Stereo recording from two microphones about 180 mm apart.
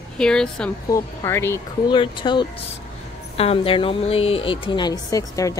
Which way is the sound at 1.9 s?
25° left (ahead or behind).